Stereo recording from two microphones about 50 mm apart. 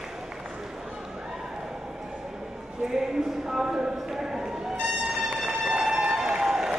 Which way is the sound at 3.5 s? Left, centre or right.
Centre.